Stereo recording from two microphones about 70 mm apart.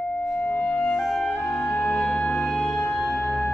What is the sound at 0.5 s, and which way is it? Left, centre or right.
Music, centre.